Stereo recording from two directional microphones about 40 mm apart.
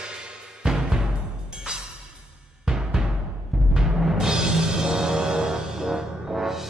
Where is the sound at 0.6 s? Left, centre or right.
Centre.